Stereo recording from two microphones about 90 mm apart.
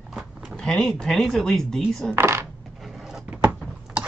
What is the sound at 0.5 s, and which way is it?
Speech, 5° left (ahead or behind).